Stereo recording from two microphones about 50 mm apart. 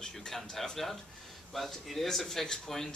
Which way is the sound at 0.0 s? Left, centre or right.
Centre.